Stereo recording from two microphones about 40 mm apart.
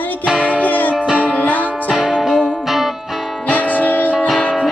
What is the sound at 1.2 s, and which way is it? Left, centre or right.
Music, left.